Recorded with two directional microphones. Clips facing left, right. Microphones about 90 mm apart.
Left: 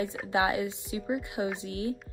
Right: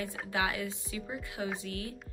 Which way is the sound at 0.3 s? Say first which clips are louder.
Left 6 dB; 20° left (ahead or behind).